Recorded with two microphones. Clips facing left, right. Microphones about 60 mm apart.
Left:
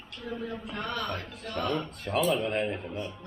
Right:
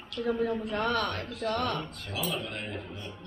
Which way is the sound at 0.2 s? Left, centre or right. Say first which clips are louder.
Right 7 dB; right.